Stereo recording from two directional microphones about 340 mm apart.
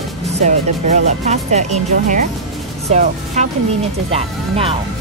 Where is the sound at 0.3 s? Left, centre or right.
Centre.